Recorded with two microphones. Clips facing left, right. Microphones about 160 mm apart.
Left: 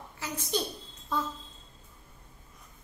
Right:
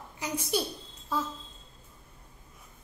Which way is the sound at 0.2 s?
10° right (ahead or behind).